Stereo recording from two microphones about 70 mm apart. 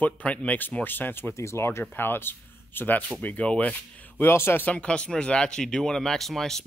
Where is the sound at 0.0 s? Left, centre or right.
Centre.